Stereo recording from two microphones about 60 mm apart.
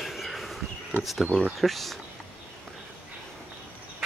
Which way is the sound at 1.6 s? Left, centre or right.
Centre.